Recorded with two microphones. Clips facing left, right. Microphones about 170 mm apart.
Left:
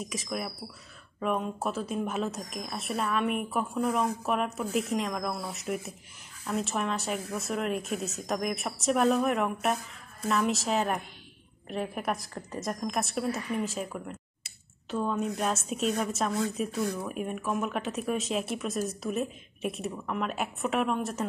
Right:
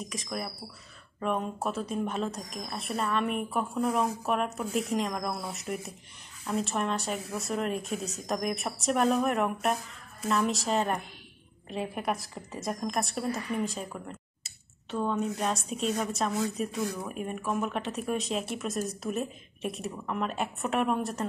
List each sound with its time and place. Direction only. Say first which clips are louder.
0.0 s a woman's voice: left 1 dB; 5° left (ahead or behind)